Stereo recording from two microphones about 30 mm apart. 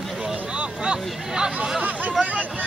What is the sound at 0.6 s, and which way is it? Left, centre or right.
Vehicle, right.